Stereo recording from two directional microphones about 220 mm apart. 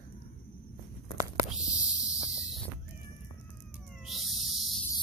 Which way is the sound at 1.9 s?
15° left (ahead or behind).